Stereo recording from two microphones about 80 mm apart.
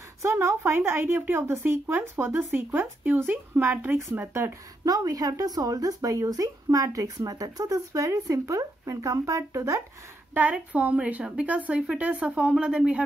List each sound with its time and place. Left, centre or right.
0.2 s a woman's voice: right
4.8 s speech: right
10.3 s a woman's voice: centre